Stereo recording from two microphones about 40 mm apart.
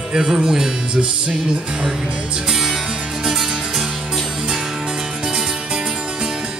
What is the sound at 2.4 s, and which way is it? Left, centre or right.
Music, centre.